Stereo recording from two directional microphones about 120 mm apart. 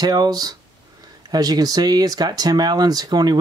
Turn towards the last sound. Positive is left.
turn(degrees=-35)  # may be behind; listen again after turning